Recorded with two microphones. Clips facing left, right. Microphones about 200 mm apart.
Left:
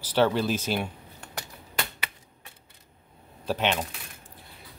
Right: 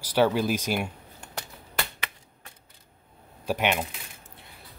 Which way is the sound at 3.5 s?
10° right (ahead or behind).